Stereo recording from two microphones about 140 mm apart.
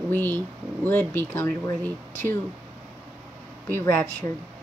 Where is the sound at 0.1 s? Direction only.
15° left (ahead or behind).